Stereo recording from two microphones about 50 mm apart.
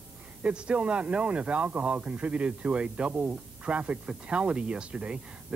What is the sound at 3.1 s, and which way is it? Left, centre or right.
Speech, right.